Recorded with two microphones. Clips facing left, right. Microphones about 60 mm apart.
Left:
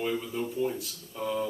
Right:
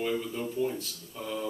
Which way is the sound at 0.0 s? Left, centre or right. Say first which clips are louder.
Even; centre.